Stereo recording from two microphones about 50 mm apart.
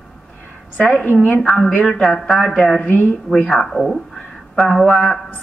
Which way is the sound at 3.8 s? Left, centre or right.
Centre.